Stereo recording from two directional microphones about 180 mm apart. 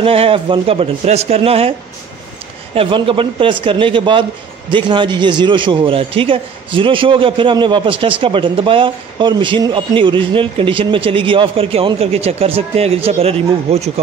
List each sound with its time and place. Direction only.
0.0 s speech: 30° right (ahead or behind)
2.7 s speech: 30° right (ahead or behind)